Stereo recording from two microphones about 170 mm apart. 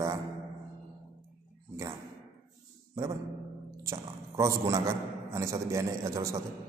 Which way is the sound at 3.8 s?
15° right (ahead or behind).